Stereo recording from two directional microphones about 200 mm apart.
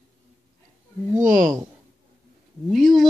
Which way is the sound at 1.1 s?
40° right (ahead or behind).